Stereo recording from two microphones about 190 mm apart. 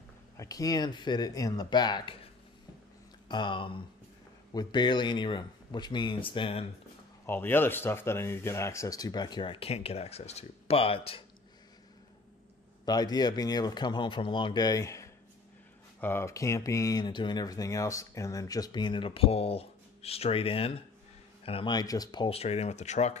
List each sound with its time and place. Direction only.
0.4 s speech: 20° left (ahead or behind)
3.3 s speech: 25° left (ahead or behind)
7.2 s speech: 10° left (ahead or behind); by 11.2 s 30° left (ahead or behind)
12.8 s speech: 20° left (ahead or behind); by 23.1 s 35° left (ahead or behind)